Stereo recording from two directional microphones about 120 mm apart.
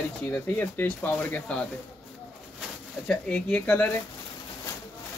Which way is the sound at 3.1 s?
10° left (ahead or behind).